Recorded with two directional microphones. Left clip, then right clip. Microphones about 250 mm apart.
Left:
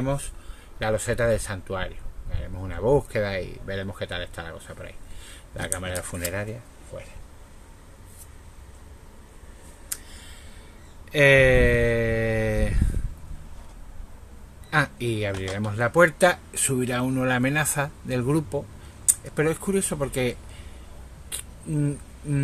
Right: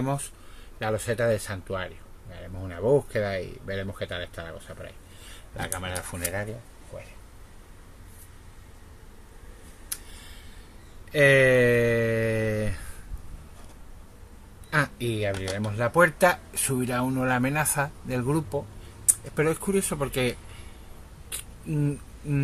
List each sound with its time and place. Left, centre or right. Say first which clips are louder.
0.0 s speech: left 2 dB; centre
0.7 s speech: left 2 dB; centre
11.1 s speech: left 2 dB; centre
14.7 s speech: left 2 dB; centre
21.3 s single-lens reflex camera: left 1 dB; centre